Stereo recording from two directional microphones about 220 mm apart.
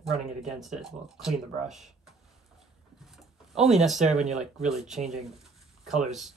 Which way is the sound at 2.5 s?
Centre (ahead or behind).